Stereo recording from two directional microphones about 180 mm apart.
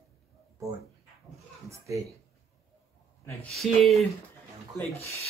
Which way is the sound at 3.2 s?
5° left (ahead or behind).